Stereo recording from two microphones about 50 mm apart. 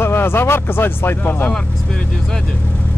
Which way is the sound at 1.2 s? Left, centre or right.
Left.